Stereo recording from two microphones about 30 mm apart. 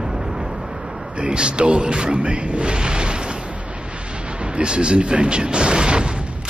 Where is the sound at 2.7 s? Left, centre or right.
Right.